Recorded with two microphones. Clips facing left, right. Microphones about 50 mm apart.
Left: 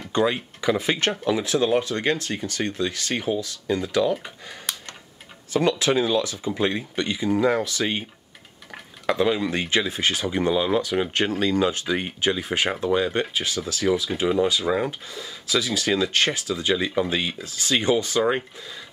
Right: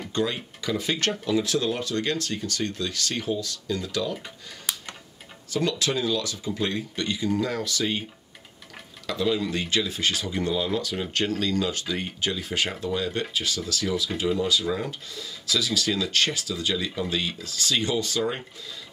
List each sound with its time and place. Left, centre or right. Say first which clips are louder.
0.1 s speech: left 6 dB; left
4.7 s computer keyboard: even; centre
5.5 s speech: left 5 dB; left
9.0 s speech: left 4 dB; left